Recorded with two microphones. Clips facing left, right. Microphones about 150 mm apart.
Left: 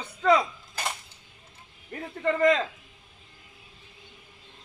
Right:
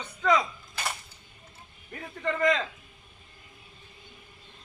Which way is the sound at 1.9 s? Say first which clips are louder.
Left 4 dB; 35° left (ahead or behind).